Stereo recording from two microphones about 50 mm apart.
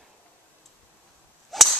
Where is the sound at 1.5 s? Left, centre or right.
Centre.